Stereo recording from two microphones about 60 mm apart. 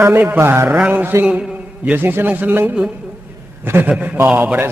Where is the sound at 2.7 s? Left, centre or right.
Centre.